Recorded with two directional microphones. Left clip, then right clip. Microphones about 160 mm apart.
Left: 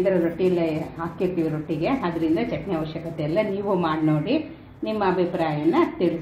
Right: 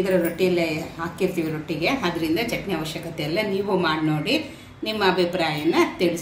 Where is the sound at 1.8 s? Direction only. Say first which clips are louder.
Right 1 dB; 40° left (ahead or behind).